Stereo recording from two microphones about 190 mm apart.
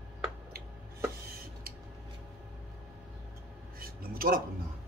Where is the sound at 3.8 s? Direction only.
50° right (ahead or behind).